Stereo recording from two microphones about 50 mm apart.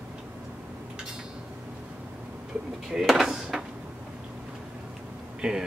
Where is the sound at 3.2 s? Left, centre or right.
Centre.